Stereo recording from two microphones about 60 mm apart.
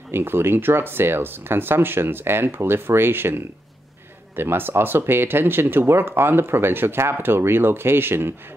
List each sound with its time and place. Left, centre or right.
0.1 s speech: right